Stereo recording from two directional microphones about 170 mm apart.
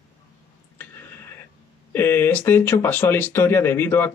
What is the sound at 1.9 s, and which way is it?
Speech, 15° left (ahead or behind).